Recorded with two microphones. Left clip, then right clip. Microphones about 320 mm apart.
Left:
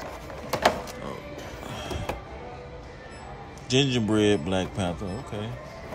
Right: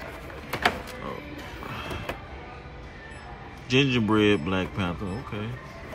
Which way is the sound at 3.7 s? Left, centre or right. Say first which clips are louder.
Right 1 dB; centre.